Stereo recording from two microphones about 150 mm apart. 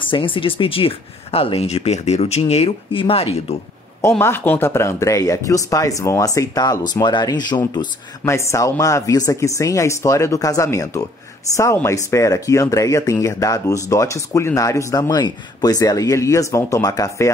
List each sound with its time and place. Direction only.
0.0 s speech: 35° left (ahead or behind)
4.2 s speech: 15° left (ahead or behind)